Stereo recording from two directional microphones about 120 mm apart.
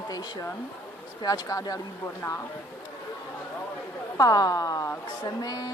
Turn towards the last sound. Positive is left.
turn(degrees=30)  # may be behind; listen again after turning